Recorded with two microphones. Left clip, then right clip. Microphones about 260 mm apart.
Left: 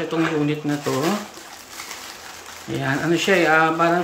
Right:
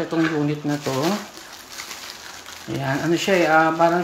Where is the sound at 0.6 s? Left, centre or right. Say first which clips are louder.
Left 1 dB; centre.